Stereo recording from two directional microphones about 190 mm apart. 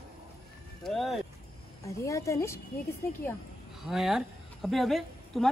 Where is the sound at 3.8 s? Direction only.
Centre (ahead or behind).